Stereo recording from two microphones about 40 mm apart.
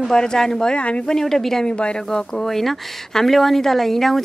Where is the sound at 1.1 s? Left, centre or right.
Centre.